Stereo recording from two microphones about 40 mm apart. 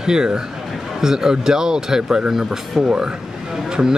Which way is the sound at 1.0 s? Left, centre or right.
Centre.